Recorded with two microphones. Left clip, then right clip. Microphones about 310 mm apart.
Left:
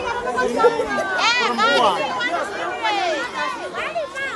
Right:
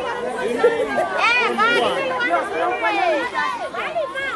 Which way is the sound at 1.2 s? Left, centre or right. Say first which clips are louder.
Right 1 dB; right.